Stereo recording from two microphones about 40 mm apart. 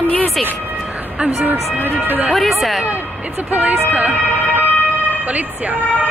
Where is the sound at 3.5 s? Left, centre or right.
Right.